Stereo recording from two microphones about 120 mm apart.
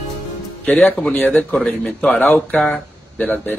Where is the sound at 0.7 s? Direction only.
10° left (ahead or behind).